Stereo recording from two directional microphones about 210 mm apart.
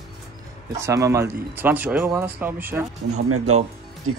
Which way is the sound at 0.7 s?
15° right (ahead or behind).